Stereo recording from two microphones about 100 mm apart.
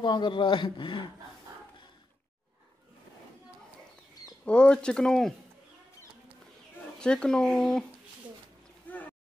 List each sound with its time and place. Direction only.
0.0 s speech: 50° left (ahead or behind)
4.5 s speech: 10° left (ahead or behind)
7.0 s speech: 10° left (ahead or behind)
8.8 s boat: 20° left (ahead or behind)